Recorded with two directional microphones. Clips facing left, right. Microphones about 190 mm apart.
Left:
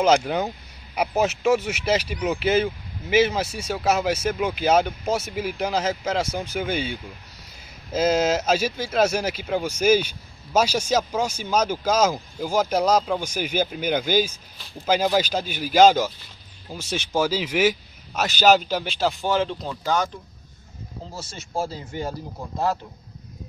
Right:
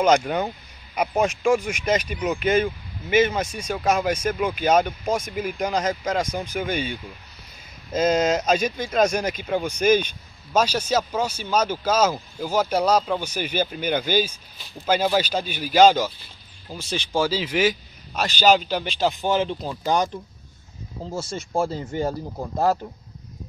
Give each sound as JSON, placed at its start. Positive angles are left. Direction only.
{"t": 0.0, "sound": "speech", "side_deg": 5}
{"t": 19.4, "sound": "speech", "side_deg": -10}
{"t": 21.1, "sound": "speech", "side_deg": -50}